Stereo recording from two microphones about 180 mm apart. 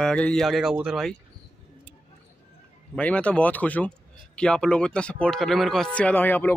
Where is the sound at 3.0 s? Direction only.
5° left (ahead or behind).